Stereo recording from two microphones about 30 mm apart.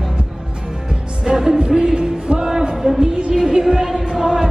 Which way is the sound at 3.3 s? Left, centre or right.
Centre.